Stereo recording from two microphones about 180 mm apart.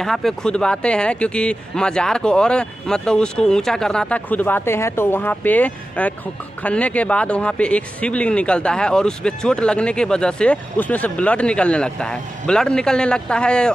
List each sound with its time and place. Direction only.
0.0 s speech: centre (ahead or behind)